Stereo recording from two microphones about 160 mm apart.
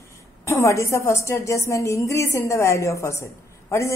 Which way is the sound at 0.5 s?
20° left (ahead or behind).